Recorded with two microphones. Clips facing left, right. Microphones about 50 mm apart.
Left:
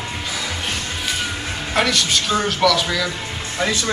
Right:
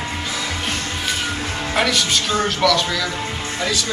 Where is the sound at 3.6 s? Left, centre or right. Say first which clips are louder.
Left 3 dB; left.